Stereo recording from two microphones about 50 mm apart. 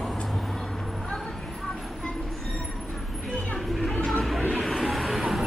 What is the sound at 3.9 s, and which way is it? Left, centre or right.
Music, centre.